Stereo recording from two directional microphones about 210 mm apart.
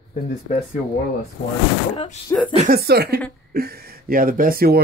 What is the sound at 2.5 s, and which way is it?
Speech, 45° right (ahead or behind).